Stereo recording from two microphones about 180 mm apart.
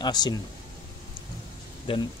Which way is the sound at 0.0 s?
20° left (ahead or behind).